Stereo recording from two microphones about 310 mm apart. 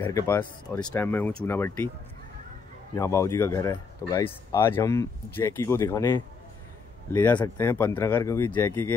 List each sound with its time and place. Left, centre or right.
0.0 s speech: centre
2.9 s speech: centre